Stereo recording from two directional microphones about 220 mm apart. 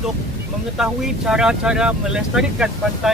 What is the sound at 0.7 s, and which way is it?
Speech, 5° right (ahead or behind).